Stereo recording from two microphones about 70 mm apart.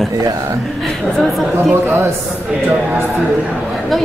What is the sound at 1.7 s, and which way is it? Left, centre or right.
Speech, right.